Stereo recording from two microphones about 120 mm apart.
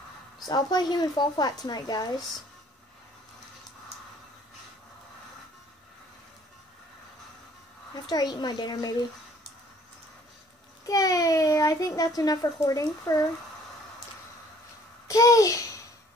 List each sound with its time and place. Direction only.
0.5 s speech: 35° left (ahead or behind)
7.9 s a woman's voice: 35° left (ahead or behind)
10.9 s a child's voice: 30° left (ahead or behind)
15.0 s a child's voice: 25° left (ahead or behind)